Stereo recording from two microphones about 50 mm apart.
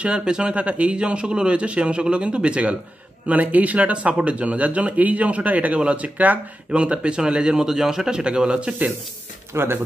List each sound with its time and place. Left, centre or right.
0.0 s speech: centre
9.5 s speech: right